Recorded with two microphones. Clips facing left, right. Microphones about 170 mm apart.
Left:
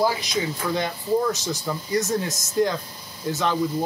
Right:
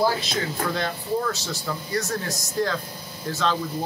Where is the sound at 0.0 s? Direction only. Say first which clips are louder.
Left 1 dB; 15° left (ahead or behind).